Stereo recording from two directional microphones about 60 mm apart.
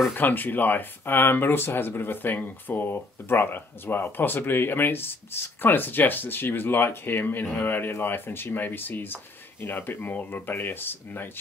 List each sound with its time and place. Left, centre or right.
0.1 s speech: left